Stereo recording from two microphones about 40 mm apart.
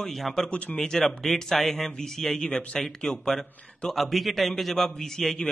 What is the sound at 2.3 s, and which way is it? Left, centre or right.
A man's voice, centre.